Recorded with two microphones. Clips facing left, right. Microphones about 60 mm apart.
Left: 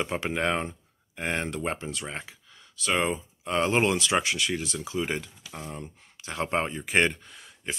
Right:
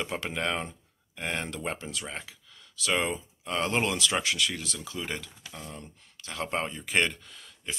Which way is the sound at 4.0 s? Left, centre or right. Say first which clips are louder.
Left 2 dB; centre.